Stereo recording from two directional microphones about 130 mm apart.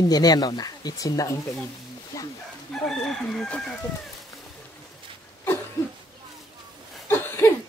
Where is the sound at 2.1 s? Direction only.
25° left (ahead or behind).